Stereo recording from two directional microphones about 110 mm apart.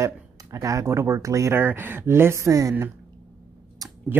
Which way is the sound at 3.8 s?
30° right (ahead or behind).